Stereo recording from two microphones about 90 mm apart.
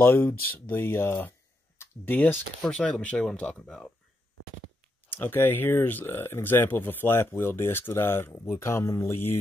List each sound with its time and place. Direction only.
0.0 s speech: 20° left (ahead or behind)
2.6 s speech: 10° left (ahead or behind)
5.1 s speech: 25° left (ahead or behind)